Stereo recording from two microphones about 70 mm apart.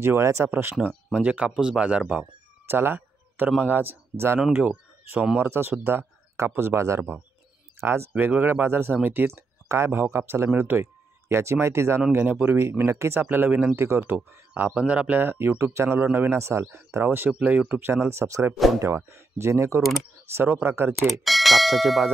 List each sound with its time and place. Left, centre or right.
0.0 s a man's voice: right
0.8 s speech: centre
2.6 s a sound: right
3.4 s speech: right
5.4 s a man's voice: right
13.2 s speech: right
13.7 s a man's voice: right
14.5 s speech: centre
15.3 s a man's voice: right
17.3 s speech: centre
17.7 s a man's voice: right
21.1 s speech: centre